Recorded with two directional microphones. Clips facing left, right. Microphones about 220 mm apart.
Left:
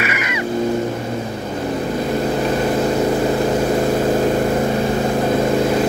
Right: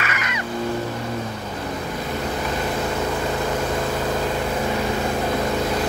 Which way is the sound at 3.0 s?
30° left (ahead or behind).